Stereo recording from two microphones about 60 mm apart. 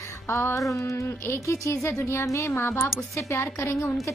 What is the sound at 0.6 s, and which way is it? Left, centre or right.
Speech, left.